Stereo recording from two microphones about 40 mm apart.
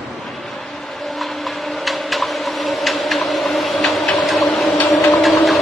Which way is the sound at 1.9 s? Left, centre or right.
Centre.